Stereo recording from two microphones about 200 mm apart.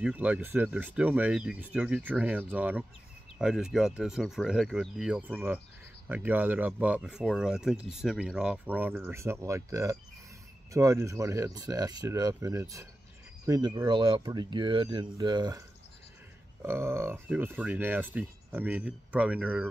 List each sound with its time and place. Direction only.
0.0 s speech: 5° right (ahead or behind)
16.6 s speech: 10° right (ahead or behind)